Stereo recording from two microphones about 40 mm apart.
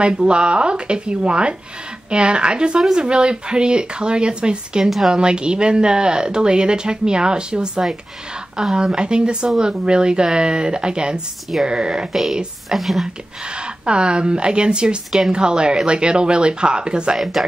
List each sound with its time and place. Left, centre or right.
0.0 s speech: right
4.8 s a woman's voice: centre
5.1 s speech: right
12.1 s a woman's voice: centre
13.8 s speech: right
17.2 s speech: centre